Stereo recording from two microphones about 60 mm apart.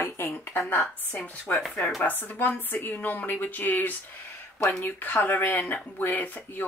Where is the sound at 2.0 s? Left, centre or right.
Left.